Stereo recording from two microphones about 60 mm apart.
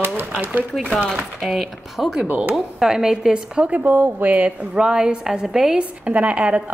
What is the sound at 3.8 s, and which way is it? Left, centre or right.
Speech, right.